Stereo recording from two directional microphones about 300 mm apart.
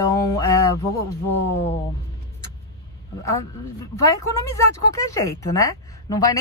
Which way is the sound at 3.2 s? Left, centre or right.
Centre.